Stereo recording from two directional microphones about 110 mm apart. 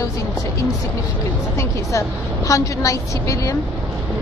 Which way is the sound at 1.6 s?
30° left (ahead or behind).